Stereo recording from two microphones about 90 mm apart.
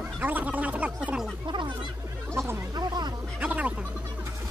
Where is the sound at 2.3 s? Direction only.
30° right (ahead or behind).